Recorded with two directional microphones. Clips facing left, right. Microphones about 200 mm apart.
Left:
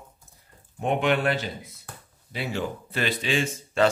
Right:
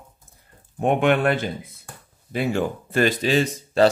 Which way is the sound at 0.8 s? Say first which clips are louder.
Right 5 dB; 55° right (ahead or behind).